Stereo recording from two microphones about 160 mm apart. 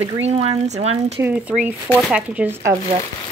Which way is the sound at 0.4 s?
40° right (ahead or behind).